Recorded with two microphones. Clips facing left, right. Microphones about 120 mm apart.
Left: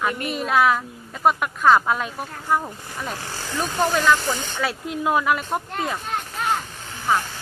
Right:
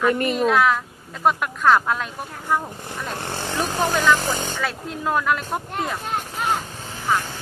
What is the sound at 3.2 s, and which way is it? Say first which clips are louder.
Speech: right 4 dB; 60° right (ahead or behind).